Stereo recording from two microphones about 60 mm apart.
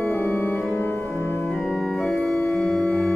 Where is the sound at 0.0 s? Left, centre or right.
Left.